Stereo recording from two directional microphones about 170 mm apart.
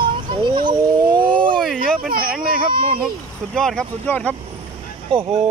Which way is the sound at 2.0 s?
60° right (ahead or behind).